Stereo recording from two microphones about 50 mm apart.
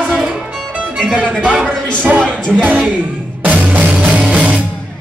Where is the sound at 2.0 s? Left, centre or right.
Right.